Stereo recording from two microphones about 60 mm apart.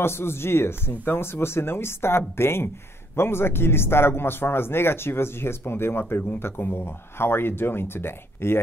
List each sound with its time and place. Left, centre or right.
0.0 s speech: left